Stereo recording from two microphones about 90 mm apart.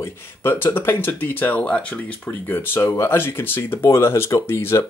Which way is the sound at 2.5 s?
25° left (ahead or behind).